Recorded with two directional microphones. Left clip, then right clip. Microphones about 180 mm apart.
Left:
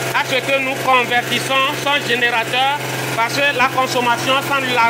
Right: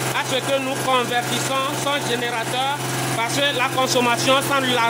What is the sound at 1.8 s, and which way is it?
Speech, centre (ahead or behind).